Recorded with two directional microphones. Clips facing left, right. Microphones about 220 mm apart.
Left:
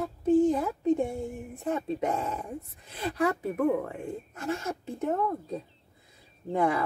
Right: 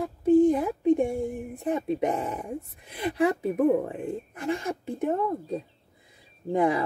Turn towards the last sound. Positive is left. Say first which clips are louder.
# right 3 dB
turn(degrees=-15)  # may be behind; listen again after turning